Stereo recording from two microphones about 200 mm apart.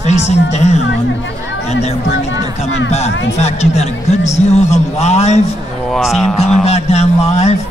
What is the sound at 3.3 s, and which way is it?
A man's voice, 35° left (ahead or behind).